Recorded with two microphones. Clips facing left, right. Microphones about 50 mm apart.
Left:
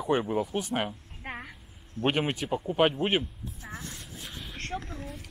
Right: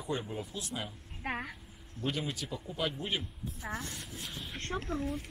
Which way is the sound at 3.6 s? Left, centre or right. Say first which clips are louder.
Right 4 dB; right.